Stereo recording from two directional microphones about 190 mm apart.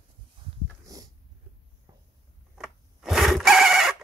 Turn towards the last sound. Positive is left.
turn(degrees=0)  # may be behind; listen again after turning